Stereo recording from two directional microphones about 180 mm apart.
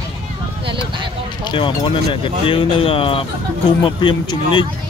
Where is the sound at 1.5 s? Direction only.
25° left (ahead or behind).